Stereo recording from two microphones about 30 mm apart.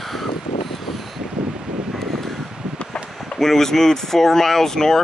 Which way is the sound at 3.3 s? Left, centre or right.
Centre.